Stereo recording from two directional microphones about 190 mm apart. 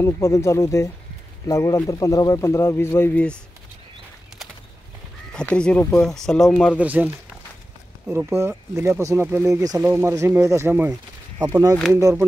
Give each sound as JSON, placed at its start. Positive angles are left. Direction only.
{"t": 0.0, "sound": "speech", "side_deg": 15}
{"t": 5.3, "sound": "speech", "side_deg": 5}
{"t": 8.1, "sound": "speech", "side_deg": -10}